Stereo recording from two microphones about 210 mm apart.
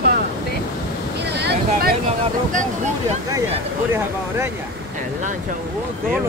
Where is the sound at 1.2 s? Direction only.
50° right (ahead or behind).